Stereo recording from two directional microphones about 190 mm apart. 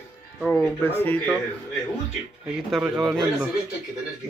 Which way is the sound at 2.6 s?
Centre (ahead or behind).